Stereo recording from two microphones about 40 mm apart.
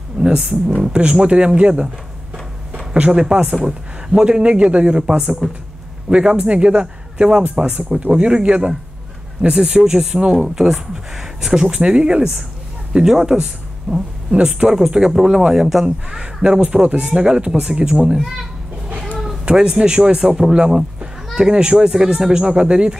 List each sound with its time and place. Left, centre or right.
0.2 s a man's voice: right
2.9 s a man's voice: right
9.8 s a man's voice: right
10.5 s a man's voice: centre
11.7 s a man's voice: right
16.4 s a man's voice: right
19.5 s a man's voice: right
20.2 s a man's voice: centre